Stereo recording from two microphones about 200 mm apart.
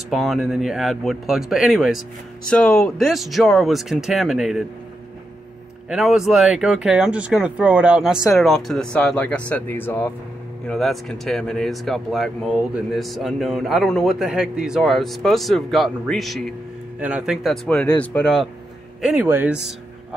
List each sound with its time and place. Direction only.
0.1 s speech: centre (ahead or behind)
5.9 s speech: centre (ahead or behind)
10.7 s a man's voice: centre (ahead or behind)